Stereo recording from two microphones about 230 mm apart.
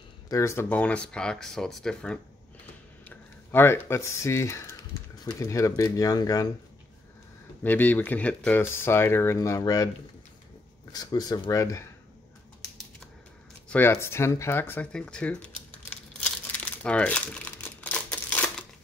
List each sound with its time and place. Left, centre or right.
0.3 s speech: centre
7.6 s speech: centre
10.9 s speech: centre
13.7 s speech: centre
16.8 s crumpling: centre